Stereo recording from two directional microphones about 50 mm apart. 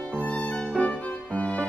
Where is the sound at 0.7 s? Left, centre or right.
Left.